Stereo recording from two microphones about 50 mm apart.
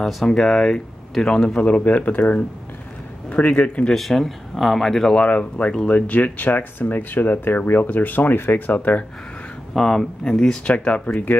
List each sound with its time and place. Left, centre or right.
0.0 s speech: centre; by 3.8 s left
3.9 s speech: centre
5.1 s speech: left
9.8 s speech: centre
10.7 s speech: left